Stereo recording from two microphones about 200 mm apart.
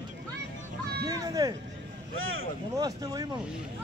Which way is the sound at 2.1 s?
90° right.